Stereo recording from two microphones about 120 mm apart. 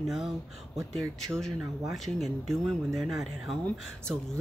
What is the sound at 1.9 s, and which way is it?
Speech, centre (ahead or behind).